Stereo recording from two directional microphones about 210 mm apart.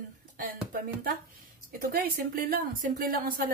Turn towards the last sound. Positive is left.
turn(degrees=-45)  # may be behind; listen again after turning